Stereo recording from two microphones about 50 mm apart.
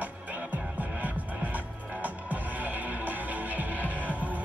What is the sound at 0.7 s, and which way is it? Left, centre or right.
Music, right.